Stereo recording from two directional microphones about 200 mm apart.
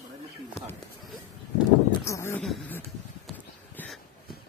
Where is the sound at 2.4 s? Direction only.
Centre (ahead or behind).